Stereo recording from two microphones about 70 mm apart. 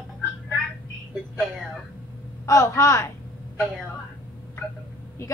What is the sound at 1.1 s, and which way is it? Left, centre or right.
Speech, centre.